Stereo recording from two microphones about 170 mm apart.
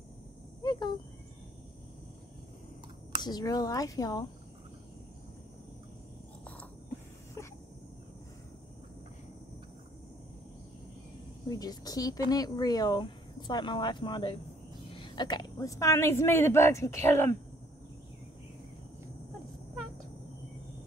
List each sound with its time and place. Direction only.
0.6 s a sound: 25° left (ahead or behind)
3.2 s speech: 25° left (ahead or behind)
11.4 s a woman's voice: 20° left (ahead or behind)